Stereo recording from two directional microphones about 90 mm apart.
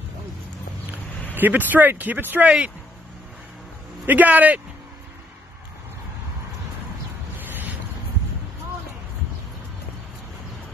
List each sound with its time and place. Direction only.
1.3 s speech: 20° right (ahead or behind)
4.0 s a man's voice: 20° right (ahead or behind)
7.3 s vehicle: 20° right (ahead or behind)